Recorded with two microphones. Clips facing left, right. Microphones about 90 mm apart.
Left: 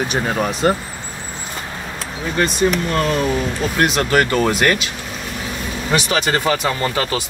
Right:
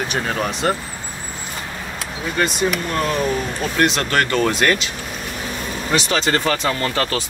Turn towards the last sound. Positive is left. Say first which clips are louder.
# left 1 dB
turn(degrees=10)  # may be behind; listen again after turning